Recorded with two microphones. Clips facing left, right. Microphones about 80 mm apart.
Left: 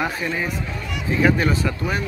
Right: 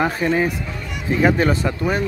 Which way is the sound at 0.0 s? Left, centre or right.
Right.